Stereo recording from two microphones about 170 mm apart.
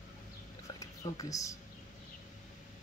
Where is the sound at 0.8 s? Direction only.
20° left (ahead or behind).